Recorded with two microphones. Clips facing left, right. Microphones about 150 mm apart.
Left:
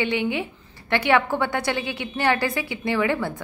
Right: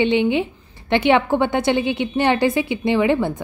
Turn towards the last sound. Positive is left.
turn(degrees=-20)  # may be behind; listen again after turning